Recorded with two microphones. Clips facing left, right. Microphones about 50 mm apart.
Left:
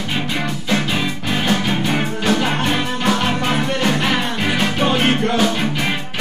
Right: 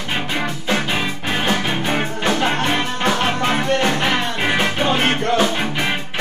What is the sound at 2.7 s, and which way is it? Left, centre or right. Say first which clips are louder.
Music: left 1 dB; centre.